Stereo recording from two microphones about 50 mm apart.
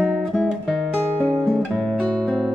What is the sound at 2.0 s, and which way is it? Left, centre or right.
Music, centre.